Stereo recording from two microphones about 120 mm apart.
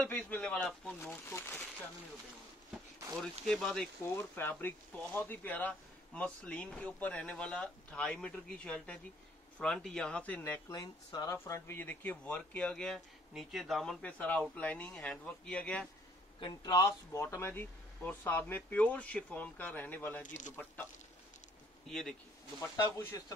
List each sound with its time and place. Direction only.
0.0 s speech: 10° left (ahead or behind)
3.2 s speech: 5° left (ahead or behind)
4.0 s speech: 20° left (ahead or behind)
10.7 s speech: 30° left (ahead or behind); by 15.9 s 10° left (ahead or behind)
16.3 s speech: 35° left (ahead or behind); by 20.2 s 15° left (ahead or behind)
20.2 s speech: 90° left
21.8 s speech: 5° left (ahead or behind)
22.6 s speech: 25° left (ahead or behind)